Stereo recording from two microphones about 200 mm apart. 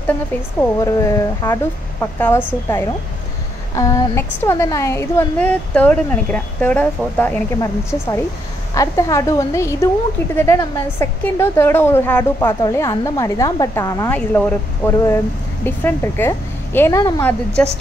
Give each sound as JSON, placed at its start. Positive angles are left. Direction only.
{"t": 0.6, "sound": "a woman's voice", "side_deg": 15}
{"t": 3.7, "sound": "a woman's voice", "side_deg": 15}